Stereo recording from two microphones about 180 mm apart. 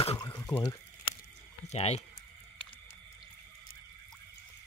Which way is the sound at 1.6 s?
35° left (ahead or behind).